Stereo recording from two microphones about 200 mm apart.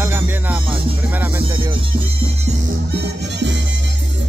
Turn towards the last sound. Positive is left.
turn(degrees=-60)  # may be behind; listen again after turning